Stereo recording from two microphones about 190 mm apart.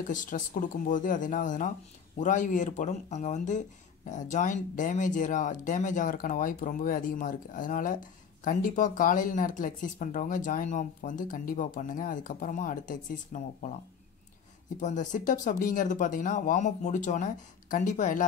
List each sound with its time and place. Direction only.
0.1 s speech: 45° left (ahead or behind)
14.8 s speech: 40° left (ahead or behind)